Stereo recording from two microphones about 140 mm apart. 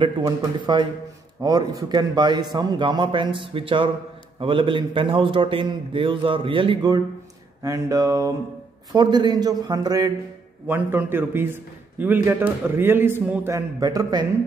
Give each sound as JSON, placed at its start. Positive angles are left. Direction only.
{"t": 0.7, "sound": "a man's voice", "side_deg": -30}
{"t": 10.7, "sound": "a man's voice", "side_deg": -15}